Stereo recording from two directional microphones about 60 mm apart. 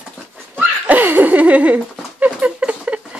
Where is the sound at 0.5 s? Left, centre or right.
Right.